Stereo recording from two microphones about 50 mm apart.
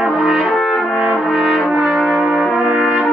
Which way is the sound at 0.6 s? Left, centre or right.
Centre.